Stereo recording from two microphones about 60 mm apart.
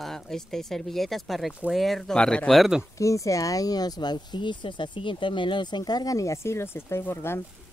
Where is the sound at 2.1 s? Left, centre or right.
Centre.